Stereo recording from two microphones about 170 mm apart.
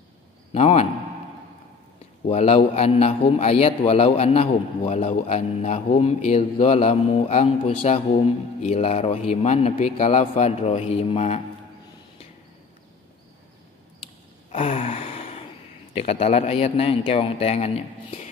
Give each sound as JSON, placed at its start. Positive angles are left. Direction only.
{"t": 0.5, "sound": "a man's voice", "side_deg": 40}
{"t": 2.2, "sound": "a man's voice", "side_deg": 40}
{"t": 14.5, "sound": "gasp", "side_deg": 35}
{"t": 15.9, "sound": "a man's voice", "side_deg": 35}